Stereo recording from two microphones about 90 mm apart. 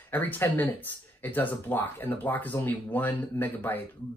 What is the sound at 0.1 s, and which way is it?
Speech, 20° left (ahead or behind).